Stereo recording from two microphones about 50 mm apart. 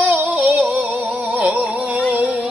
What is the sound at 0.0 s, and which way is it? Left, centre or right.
Music, right.